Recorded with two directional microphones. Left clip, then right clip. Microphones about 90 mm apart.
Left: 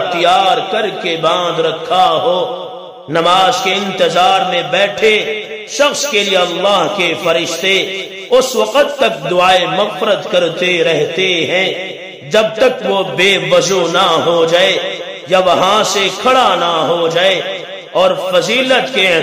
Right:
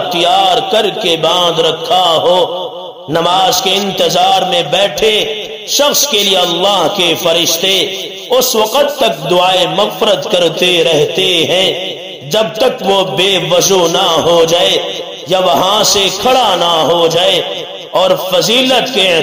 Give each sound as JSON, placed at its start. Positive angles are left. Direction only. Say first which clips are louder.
{"t": 0.1, "sound": "a man's voice", "louder": "right 1 dB", "side_deg": -25}
{"t": 9.0, "sound": "a man's voice", "louder": "right 1 dB", "side_deg": -25}